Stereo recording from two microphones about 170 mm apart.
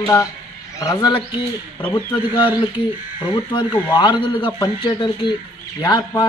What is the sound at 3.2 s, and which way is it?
Speech, 25° left (ahead or behind).